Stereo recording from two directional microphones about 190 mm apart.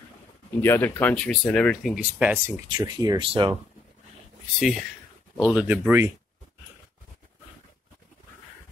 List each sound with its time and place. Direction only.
0.6 s speech: 10° left (ahead or behind); by 3.5 s 25° right (ahead or behind)
4.6 s speech: centre (ahead or behind)